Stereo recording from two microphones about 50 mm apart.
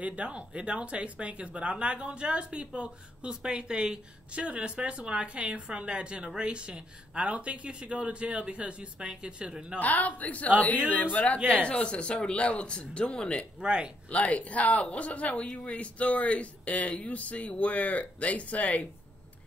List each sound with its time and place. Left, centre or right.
0.0 s speech: right
9.8 s a woman's voice: left
11.6 s speech: left
13.6 s speech: right
14.1 s speech: left